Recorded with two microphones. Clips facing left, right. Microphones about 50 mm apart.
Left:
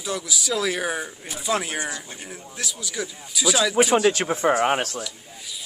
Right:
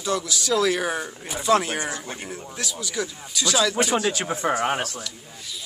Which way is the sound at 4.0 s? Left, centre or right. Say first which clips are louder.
Left 5 dB; left.